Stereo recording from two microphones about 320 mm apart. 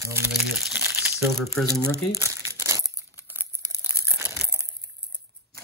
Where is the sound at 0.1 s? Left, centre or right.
Centre.